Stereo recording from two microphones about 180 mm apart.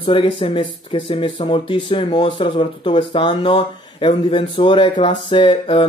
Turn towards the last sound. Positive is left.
turn(degrees=30)  # may be behind; listen again after turning